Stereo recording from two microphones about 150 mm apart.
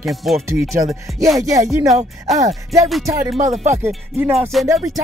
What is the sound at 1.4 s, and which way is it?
Speech, 20° right (ahead or behind).